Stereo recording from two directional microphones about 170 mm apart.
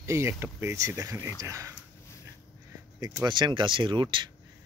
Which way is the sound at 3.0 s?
25° right (ahead or behind).